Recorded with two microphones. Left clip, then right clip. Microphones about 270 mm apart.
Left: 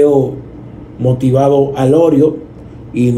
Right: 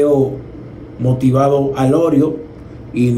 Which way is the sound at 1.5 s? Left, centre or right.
Centre.